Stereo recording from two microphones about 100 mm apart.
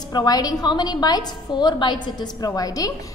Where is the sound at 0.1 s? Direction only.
40° left (ahead or behind).